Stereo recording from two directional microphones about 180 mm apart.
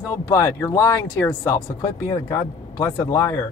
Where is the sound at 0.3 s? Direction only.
15° left (ahead or behind).